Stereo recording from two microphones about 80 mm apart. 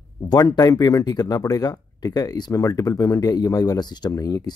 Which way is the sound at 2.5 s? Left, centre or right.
Left.